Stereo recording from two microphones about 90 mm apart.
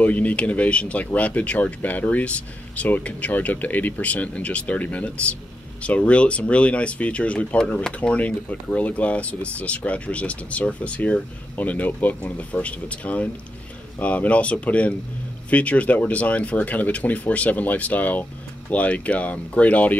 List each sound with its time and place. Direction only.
0.0 s speech: 15° left (ahead or behind)